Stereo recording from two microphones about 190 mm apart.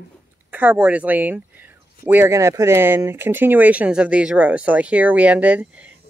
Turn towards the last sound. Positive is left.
turn(degrees=-5)  # may be behind; listen again after turning